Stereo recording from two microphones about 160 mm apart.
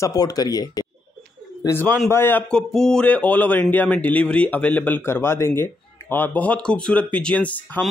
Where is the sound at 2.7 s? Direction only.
5° left (ahead or behind).